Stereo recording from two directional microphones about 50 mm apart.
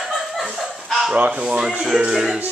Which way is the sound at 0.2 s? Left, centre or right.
Centre.